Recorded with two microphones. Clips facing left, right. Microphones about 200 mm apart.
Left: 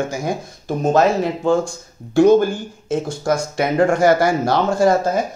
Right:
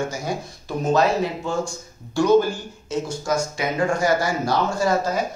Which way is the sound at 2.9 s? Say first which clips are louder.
Left 4 dB; 55° left (ahead or behind).